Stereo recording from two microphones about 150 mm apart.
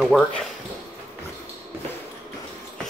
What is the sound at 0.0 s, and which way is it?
Speech, 5° left (ahead or behind).